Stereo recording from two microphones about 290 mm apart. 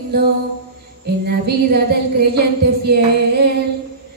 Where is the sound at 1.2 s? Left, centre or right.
Right.